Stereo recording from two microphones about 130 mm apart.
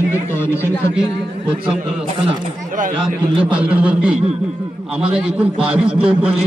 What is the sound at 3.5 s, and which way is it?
A man's voice, 10° right (ahead or behind).